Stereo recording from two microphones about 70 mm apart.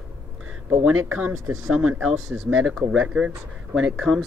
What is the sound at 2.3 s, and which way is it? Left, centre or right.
Speech, centre.